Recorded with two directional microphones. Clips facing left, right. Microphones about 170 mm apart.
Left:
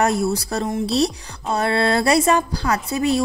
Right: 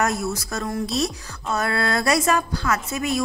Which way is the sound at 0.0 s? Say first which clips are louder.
Left 4 dB; 30° left (ahead or behind).